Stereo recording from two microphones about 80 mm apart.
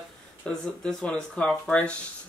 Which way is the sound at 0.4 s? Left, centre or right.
Centre.